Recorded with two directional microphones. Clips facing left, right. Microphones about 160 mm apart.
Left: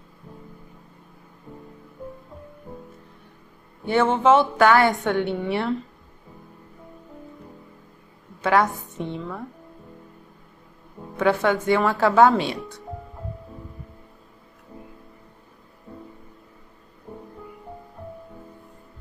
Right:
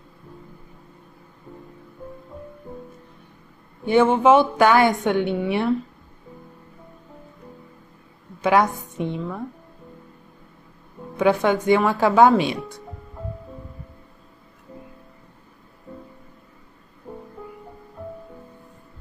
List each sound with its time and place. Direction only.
3.8 s a woman's voice: 15° right (ahead or behind)
8.4 s a woman's voice: 15° right (ahead or behind)
11.1 s a woman's voice: 15° right (ahead or behind)